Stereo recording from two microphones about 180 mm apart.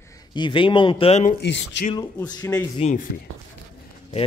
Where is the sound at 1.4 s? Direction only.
80° left.